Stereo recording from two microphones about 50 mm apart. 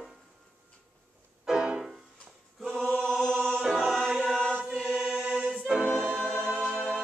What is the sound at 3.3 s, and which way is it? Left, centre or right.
Choir, right.